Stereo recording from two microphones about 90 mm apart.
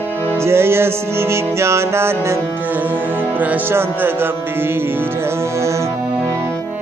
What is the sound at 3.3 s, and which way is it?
Music, 25° right (ahead or behind).